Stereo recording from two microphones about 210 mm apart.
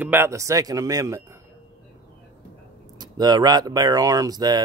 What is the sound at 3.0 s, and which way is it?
Speech, 20° right (ahead or behind).